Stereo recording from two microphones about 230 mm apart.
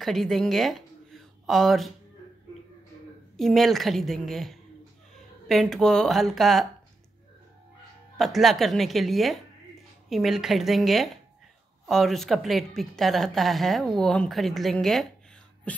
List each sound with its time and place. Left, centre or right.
0.0 s speech: centre
3.3 s speech: centre
8.2 s speech: centre